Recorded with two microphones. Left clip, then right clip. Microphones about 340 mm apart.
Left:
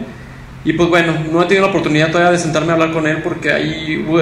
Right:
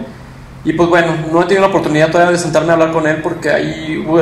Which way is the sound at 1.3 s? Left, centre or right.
Right.